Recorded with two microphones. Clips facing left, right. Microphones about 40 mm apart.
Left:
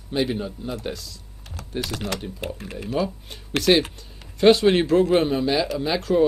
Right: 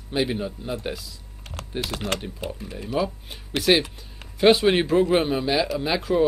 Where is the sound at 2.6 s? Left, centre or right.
Left.